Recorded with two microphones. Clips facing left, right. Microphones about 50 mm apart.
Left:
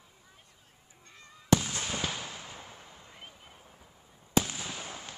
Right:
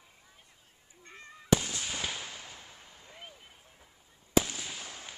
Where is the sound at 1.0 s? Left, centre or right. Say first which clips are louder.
Right 5 dB; right.